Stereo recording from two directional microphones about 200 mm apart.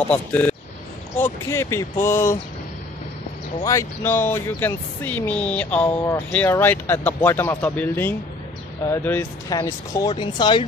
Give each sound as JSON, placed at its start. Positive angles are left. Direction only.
{"t": 0.1, "sound": "speech", "side_deg": 10}
{"t": 3.6, "sound": "speech", "side_deg": 15}